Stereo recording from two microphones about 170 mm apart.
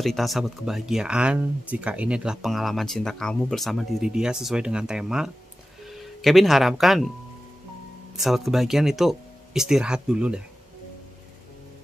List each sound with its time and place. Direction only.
0.0 s speech: centre (ahead or behind)
8.2 s speech: centre (ahead or behind)